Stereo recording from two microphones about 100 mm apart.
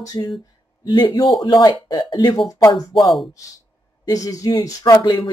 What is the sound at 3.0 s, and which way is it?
Speech, centre (ahead or behind).